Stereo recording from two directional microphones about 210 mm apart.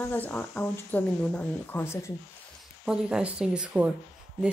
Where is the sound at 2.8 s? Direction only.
5° right (ahead or behind).